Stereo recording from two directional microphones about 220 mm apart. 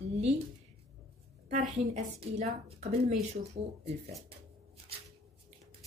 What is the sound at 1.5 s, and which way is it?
A woman's voice, 35° right (ahead or behind).